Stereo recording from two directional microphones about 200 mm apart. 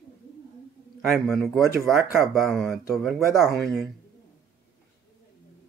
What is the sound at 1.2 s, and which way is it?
Speech, centre (ahead or behind).